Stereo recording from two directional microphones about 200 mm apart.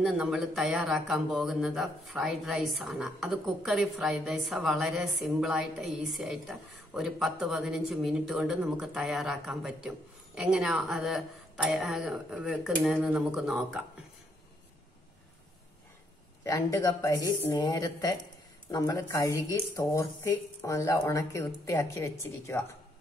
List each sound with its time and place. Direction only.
0.0 s speech: 5° right (ahead or behind)
16.4 s a woman's voice: 15° left (ahead or behind)